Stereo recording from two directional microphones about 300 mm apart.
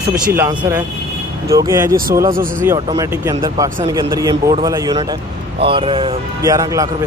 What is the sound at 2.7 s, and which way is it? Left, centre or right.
Speech, centre.